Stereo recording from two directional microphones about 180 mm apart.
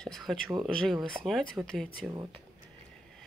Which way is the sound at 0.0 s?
Centre (ahead or behind).